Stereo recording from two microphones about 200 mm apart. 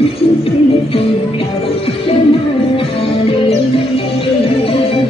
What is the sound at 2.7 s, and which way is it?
Music, 25° left (ahead or behind).